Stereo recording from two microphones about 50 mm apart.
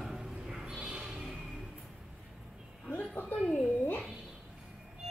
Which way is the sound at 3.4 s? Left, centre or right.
Centre.